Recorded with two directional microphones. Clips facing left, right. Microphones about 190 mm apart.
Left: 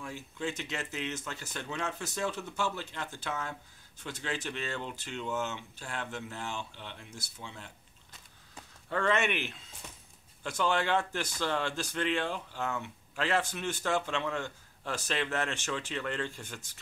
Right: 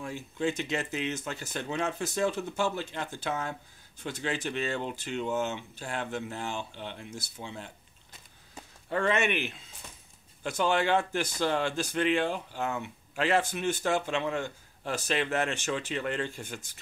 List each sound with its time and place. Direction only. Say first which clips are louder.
0.0 s speech: right 6 dB; 20° right (ahead or behind)
8.8 s speech: right 2 dB; 15° right (ahead or behind)